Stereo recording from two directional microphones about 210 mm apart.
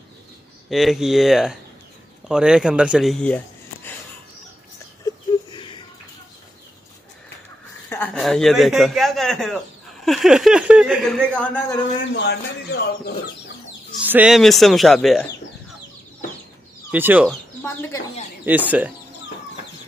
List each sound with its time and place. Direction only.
0.7 s a man's voice: centre (ahead or behind)
5.0 s a sound: 20° left (ahead or behind)
7.9 s a man's voice: 5° left (ahead or behind)
12.1 s speech: 55° left (ahead or behind)
14.0 s a man's voice: 5° right (ahead or behind)
16.9 s speech: 10° right (ahead or behind)
17.6 s speech: 10° left (ahead or behind)
18.4 s speech: 10° right (ahead or behind)